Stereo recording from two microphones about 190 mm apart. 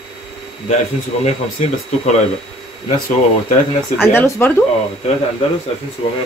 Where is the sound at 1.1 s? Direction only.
35° left (ahead or behind).